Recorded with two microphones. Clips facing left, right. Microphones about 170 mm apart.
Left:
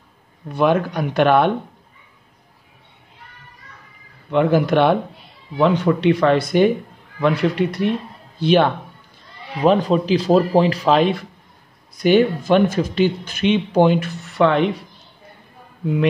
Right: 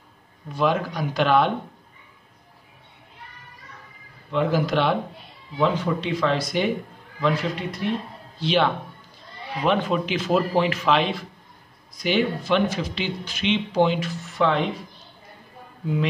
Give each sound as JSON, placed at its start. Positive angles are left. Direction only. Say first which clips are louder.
{"t": 0.5, "sound": "speech", "louder": "left 5 dB", "side_deg": 60}
{"t": 4.3, "sound": "speech", "louder": "left 6 dB", "side_deg": 60}
{"t": 8.4, "sound": "speech", "louder": "left 6 dB", "side_deg": 50}
{"t": 9.6, "sound": "speech", "louder": "left 6 dB", "side_deg": 35}
{"t": 12.0, "sound": "speech", "louder": "left 8 dB", "side_deg": 50}